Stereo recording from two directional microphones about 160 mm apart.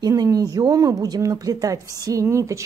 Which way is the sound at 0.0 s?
20° right (ahead or behind).